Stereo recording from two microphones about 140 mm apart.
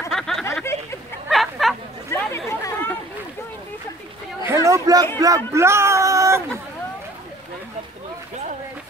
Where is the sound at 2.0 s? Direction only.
20° left (ahead or behind).